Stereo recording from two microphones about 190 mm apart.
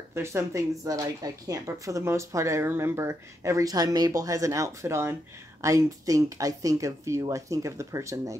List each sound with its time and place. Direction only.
0.1 s speech: 15° right (ahead or behind)